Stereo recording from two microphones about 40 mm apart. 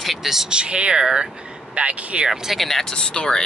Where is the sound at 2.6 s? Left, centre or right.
Centre.